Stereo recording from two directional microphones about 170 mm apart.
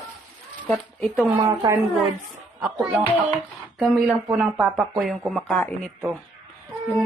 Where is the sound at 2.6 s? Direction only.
Centre (ahead or behind).